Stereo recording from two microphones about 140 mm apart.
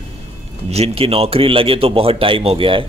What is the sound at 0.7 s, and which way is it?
A man's voice, 45° right (ahead or behind).